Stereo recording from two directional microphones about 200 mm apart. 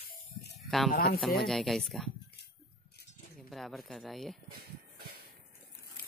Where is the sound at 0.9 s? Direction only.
50° left (ahead or behind).